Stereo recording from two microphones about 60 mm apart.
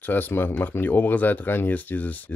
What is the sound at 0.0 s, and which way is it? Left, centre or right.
Speech, left.